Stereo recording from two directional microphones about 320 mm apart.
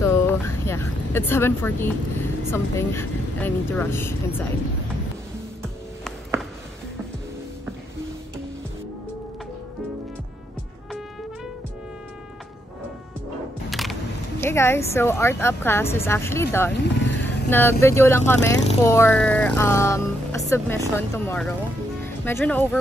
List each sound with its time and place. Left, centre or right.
0.0 s speech: centre
5.6 s music: centre
13.7 s music: centre
14.4 s speech: centre
16.7 s vehicle: left
17.5 s speech: centre